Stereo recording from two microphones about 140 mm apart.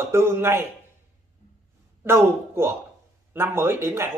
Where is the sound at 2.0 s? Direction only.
15° right (ahead or behind).